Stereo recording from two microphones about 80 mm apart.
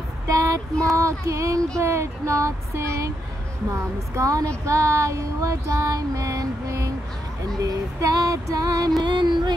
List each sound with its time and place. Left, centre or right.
0.3 s child singing: right
7.6 s female singing: right
9.0 s music: right